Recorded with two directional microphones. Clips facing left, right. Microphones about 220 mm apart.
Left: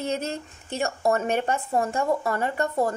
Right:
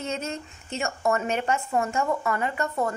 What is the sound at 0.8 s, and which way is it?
Speech, 35° left (ahead or behind).